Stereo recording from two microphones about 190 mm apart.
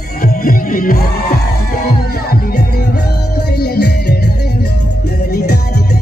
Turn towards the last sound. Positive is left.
turn(degrees=60)  # may be behind; listen again after turning